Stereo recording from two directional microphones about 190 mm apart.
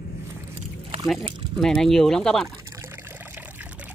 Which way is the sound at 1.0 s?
Centre (ahead or behind).